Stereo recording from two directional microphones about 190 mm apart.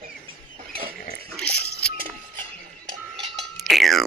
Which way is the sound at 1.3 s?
5° left (ahead or behind).